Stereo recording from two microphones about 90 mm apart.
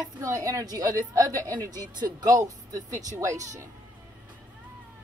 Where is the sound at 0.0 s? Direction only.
35° right (ahead or behind).